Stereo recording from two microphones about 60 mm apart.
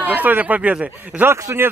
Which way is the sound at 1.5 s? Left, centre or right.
Right.